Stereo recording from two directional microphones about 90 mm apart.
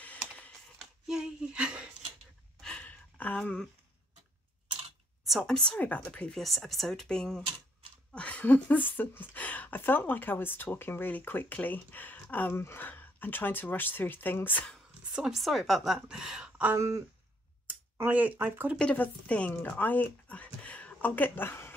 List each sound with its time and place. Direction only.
0.7 s a sound: 5° right (ahead or behind)
2.6 s a sound: 15° left (ahead or behind)
5.2 s speech: centre (ahead or behind); by 14.7 s 20° left (ahead or behind)
15.1 s speech: 5° right (ahead or behind)
16.7 s speech: 30° right (ahead or behind)
18.1 s speech: 15° right (ahead or behind)
18.8 s speech: 15° left (ahead or behind)